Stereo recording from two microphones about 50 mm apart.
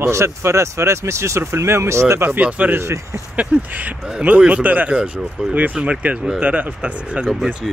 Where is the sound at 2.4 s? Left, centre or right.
Right.